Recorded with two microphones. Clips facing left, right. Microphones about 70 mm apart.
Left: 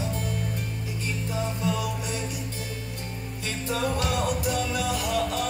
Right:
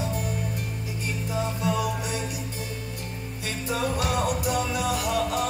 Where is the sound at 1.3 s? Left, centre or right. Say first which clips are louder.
Right 2 dB; centre.